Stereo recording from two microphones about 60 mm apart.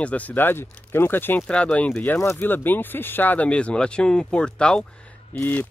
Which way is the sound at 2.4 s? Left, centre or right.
Left.